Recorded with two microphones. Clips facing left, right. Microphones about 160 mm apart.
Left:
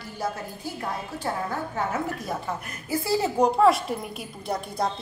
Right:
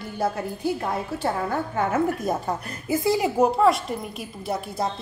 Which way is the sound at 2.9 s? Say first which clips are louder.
Right 3 dB; 20° right (ahead or behind).